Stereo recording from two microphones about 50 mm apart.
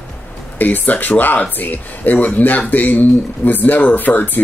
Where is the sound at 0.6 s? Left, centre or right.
Left.